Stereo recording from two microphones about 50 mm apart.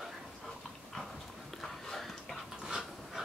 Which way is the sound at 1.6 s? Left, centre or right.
Centre.